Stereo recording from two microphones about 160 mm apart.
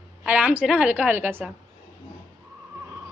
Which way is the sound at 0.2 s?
5° right (ahead or behind).